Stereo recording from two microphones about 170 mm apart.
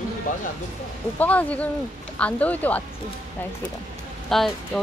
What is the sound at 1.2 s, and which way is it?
Speech, 10° left (ahead or behind).